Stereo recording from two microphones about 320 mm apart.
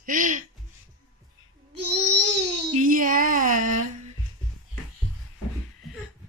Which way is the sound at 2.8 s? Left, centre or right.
Right.